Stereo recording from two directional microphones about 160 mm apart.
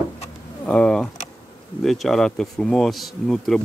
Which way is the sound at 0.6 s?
5° left (ahead or behind).